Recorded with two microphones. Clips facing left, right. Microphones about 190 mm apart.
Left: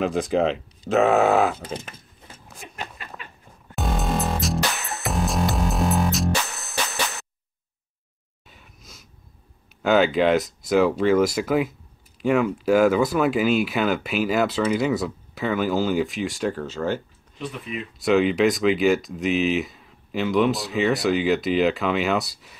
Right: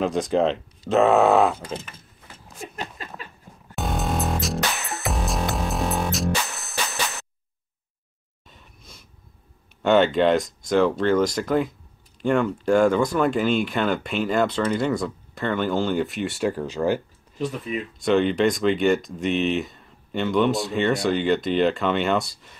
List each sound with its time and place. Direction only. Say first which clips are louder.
0.0 s speech: even; centre (ahead or behind)
2.7 s a sound: left 1 dB; 40° right (ahead or behind)
3.7 s music: left 1 dB; centre (ahead or behind)
8.5 s a sound: even; 5° left (ahead or behind)
9.8 s speech: right 1 dB; centre (ahead or behind)
17.9 s speech: left 1 dB; centre (ahead or behind)